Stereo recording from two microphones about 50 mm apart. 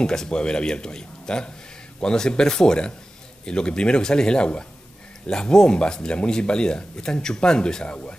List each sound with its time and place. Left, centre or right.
0.0 s speech: centre